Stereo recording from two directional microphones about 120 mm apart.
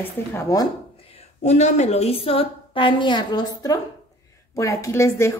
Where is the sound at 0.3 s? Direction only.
25° left (ahead or behind).